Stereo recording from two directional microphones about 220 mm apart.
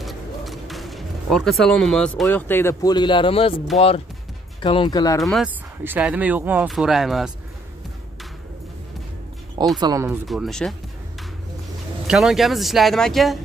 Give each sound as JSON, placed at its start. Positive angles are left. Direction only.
{"t": 0.0, "sound": "a sound", "side_deg": 0}
{"t": 2.2, "sound": "speech", "side_deg": 10}
{"t": 5.2, "sound": "speech", "side_deg": 0}
{"t": 9.8, "sound": "speech", "side_deg": -15}
{"t": 10.2, "sound": "speech", "side_deg": 0}
{"t": 12.1, "sound": "speech", "side_deg": 0}